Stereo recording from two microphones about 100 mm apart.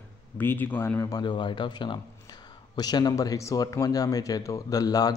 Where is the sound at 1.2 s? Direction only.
55° left (ahead or behind).